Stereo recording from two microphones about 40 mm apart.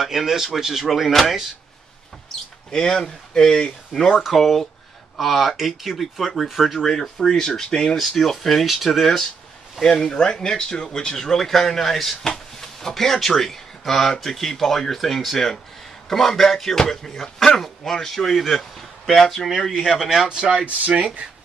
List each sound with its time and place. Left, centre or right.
0.0 s speech: centre
2.3 s basketball bounce: centre
2.7 s speech: centre
4.2 s speech: centre
6.9 s speech: centre
9.8 s speech: centre
11.1 s speech: centre
20.2 s speech: centre
20.6 s speech: right